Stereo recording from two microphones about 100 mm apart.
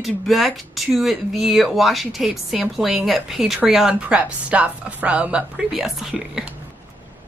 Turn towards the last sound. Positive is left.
turn(degrees=-5)  # may be behind; listen again after turning